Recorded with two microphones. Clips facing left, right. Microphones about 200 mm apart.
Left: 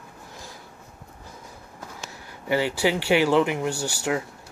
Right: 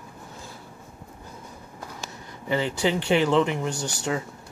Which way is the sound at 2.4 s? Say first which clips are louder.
Left 1 dB; 10° left (ahead or behind).